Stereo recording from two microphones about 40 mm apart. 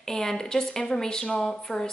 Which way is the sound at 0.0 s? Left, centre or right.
Centre.